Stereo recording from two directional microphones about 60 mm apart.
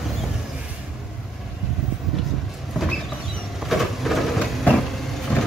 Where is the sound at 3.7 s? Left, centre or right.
Centre.